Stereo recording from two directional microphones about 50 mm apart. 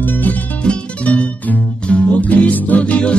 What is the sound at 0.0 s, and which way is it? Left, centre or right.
Music, left.